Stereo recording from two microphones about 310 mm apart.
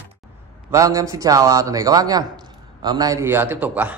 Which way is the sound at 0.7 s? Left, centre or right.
Centre.